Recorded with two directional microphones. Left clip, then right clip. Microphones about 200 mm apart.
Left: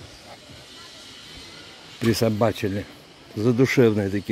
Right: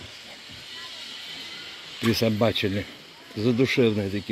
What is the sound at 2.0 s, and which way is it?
Speech, 20° left (ahead or behind).